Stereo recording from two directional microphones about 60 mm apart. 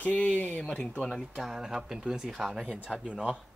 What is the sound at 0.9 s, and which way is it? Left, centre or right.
Speech, centre.